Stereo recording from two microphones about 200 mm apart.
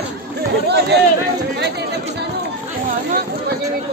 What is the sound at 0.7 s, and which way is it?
Chatter, 55° right (ahead or behind).